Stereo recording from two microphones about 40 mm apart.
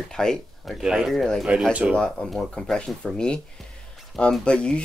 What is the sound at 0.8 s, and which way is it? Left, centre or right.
Speech, right.